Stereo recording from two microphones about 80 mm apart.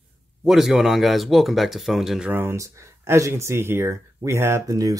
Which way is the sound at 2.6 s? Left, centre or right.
Right.